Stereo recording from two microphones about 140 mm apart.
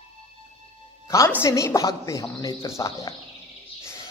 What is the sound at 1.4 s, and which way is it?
Speech, 20° left (ahead or behind).